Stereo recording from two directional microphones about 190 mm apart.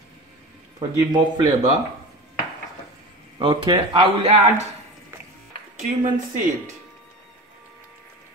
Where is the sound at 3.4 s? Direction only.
25° right (ahead or behind).